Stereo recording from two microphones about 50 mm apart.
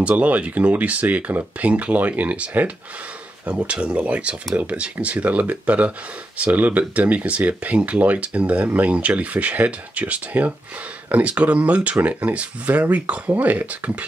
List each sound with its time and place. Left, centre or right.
0.0 s speech: right